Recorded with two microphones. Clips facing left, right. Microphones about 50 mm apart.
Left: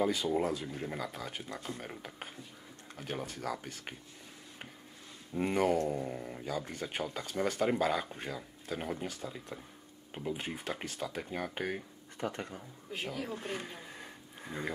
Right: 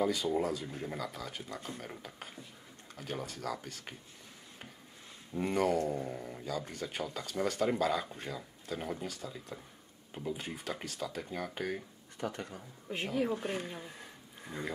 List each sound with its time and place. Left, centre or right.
0.3 s speech: centre
5.3 s speech: centre
12.9 s speech: centre
13.6 s a sound: centre